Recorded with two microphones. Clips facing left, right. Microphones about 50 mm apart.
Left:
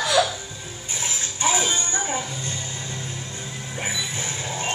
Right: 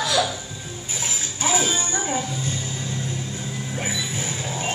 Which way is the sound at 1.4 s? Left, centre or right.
Centre.